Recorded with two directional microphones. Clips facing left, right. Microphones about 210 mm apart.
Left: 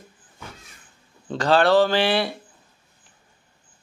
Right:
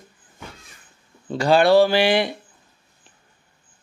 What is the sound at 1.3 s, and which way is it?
Speech, 10° right (ahead or behind).